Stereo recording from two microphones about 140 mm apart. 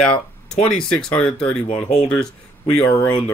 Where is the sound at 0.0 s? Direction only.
5° left (ahead or behind).